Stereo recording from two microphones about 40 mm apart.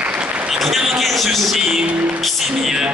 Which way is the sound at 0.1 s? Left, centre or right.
Right.